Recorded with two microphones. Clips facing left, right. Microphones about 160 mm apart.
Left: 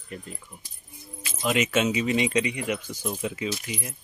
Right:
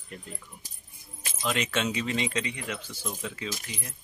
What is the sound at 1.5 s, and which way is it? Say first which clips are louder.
Speech: left 5 dB; 10° left (ahead or behind).